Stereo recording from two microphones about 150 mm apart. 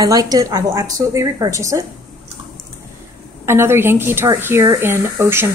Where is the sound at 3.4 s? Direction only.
15° right (ahead or behind).